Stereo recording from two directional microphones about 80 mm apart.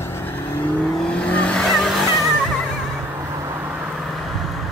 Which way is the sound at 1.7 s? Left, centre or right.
Centre.